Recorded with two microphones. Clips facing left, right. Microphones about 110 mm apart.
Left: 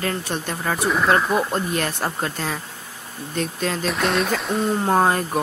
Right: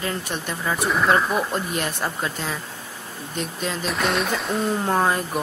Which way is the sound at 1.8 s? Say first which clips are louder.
Left 2 dB; 40° left (ahead or behind).